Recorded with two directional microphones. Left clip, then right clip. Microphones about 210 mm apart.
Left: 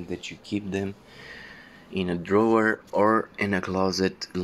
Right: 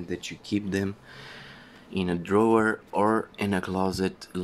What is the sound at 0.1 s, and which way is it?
Speech, 15° right (ahead or behind).